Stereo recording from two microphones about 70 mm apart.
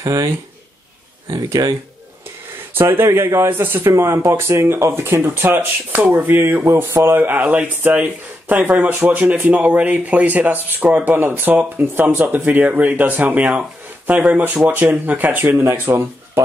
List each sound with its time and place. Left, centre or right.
0.0 s speech: right
1.3 s speech: right
2.7 s speech: right
7.1 s speech: right